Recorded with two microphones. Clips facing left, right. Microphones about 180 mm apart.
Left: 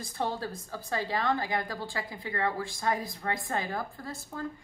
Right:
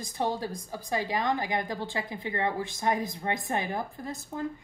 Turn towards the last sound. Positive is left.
turn(degrees=-20)  # may be behind; listen again after turning